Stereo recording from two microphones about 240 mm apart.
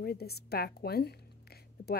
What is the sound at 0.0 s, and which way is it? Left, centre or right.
A woman's voice, left.